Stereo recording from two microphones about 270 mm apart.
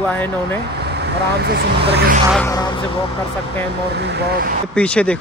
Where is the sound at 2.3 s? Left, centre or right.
Centre.